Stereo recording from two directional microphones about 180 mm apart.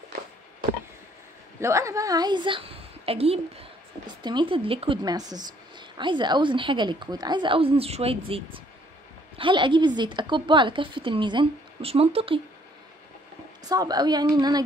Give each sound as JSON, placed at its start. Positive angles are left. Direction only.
{"t": 1.6, "sound": "speech", "side_deg": -15}
{"t": 13.7, "sound": "speech", "side_deg": -20}